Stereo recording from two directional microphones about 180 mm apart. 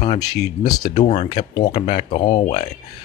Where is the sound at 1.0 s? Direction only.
40° left (ahead or behind).